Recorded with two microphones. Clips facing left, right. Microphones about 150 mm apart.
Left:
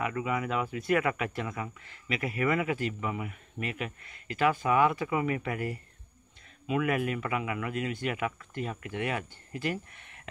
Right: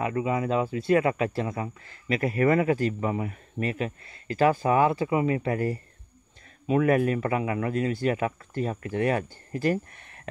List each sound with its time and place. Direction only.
0.0 s speech: 30° right (ahead or behind)